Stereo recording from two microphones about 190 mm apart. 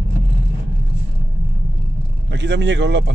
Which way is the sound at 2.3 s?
70° right (ahead or behind).